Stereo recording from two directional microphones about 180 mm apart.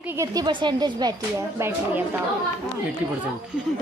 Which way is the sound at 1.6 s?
10° right (ahead or behind).